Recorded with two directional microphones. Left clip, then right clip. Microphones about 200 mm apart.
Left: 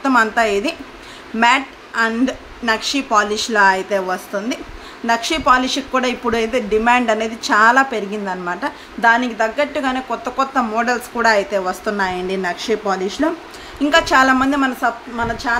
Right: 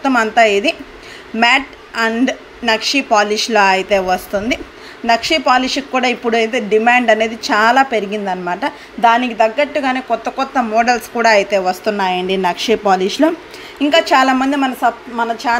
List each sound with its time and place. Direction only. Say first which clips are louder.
0.0 s a woman's voice: right 3 dB; 5° right (ahead or behind)
5.0 s a woman's voice: right 3 dB; 5° right (ahead or behind); by 13.3 s 20° right (ahead or behind)
13.8 s a woman's voice: right 1 dB; 5° right (ahead or behind)